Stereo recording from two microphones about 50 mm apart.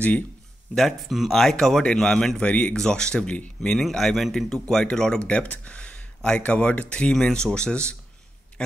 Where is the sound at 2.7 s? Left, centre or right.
Centre.